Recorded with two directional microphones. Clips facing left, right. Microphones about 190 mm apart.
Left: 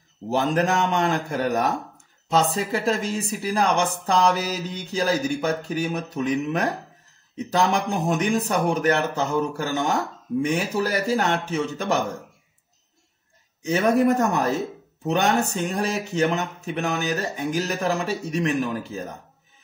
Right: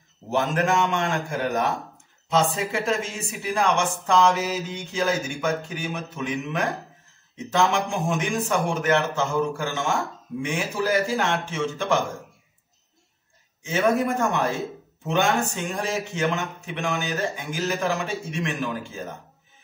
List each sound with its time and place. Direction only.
0.3 s speech: 35° left (ahead or behind)
13.6 s speech: 40° left (ahead or behind)